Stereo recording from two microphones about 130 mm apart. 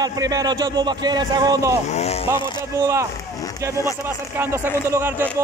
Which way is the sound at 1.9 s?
55° left (ahead or behind).